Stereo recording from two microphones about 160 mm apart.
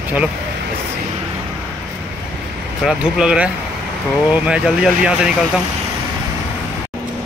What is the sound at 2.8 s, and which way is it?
Speech, 5° right (ahead or behind).